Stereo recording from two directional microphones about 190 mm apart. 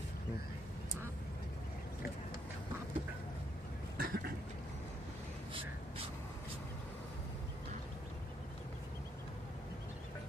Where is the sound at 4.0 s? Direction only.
50° right (ahead or behind).